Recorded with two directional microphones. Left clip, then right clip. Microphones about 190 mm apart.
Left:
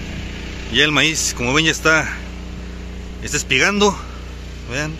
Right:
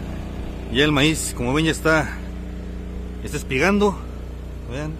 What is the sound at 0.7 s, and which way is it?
Speech, 5° right (ahead or behind).